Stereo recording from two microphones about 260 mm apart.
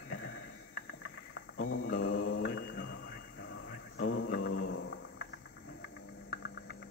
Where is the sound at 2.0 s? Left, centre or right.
Left.